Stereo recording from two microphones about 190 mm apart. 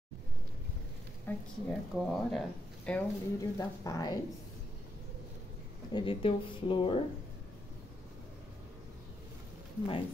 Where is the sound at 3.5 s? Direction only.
20° left (ahead or behind).